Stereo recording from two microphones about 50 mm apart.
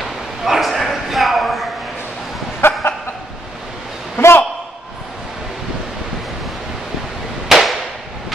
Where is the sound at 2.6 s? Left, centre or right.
Left.